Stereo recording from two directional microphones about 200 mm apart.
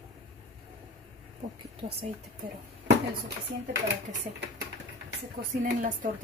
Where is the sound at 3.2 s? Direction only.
60° right (ahead or behind).